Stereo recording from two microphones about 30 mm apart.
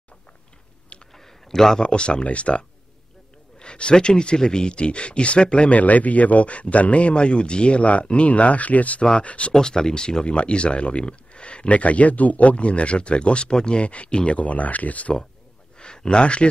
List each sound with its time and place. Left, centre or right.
1.1 s a sound: centre
1.8 s speech: left
2.2 s speech: left
3.5 s speech: left
5.7 s speech: left
7.8 s speech: left
9.1 s speech: left
9.5 s speech: left
10.3 s speech: left
13.5 s speech: left
13.7 s speech: left
15.8 s speech: left